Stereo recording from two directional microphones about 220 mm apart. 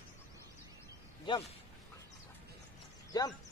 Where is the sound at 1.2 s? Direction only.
25° left (ahead or behind).